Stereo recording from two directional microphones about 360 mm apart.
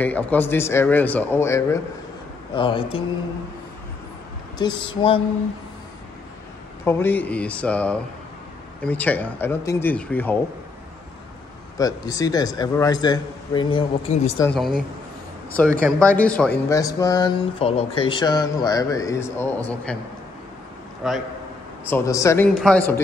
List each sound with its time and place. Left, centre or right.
0.0 s speech: centre
4.6 s speech: centre
6.8 s speech: centre
11.8 s speech: centre
14.5 s speech: centre
21.0 s speech: centre